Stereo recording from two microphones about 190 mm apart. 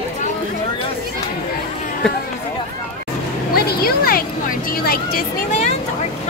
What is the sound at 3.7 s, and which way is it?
Speech, 50° left (ahead or behind).